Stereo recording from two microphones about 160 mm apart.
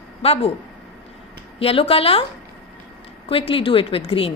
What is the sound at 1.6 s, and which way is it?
Speech, 35° left (ahead or behind).